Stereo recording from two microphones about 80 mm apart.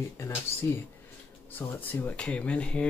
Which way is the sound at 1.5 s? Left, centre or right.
Left.